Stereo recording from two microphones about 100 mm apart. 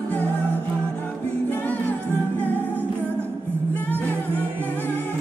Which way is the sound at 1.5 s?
15° left (ahead or behind).